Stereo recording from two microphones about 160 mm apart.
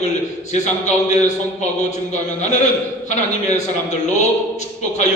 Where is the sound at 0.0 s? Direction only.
45° left (ahead or behind).